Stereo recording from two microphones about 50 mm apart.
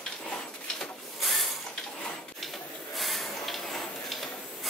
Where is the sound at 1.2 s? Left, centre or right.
Centre.